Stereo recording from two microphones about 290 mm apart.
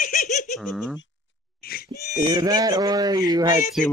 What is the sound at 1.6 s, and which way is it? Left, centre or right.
Pig, left.